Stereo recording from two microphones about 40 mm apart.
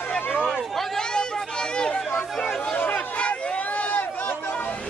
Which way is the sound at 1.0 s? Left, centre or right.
Left.